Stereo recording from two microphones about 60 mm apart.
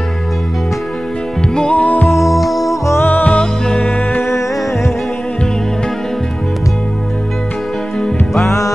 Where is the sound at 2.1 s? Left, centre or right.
Centre.